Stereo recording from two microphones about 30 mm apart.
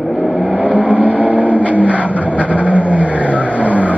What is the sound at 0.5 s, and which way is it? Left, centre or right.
Vehicle, right.